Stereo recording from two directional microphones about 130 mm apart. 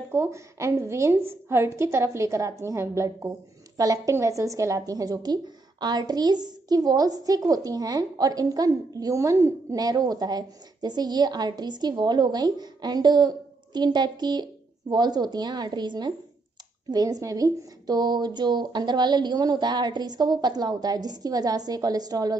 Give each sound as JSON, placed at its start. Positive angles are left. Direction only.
{"t": 0.1, "sound": "a woman's voice", "side_deg": -20}